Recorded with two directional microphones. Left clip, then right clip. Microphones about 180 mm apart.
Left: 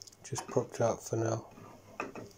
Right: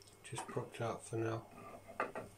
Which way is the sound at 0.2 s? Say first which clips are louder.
Left 10 dB; 35° left (ahead or behind).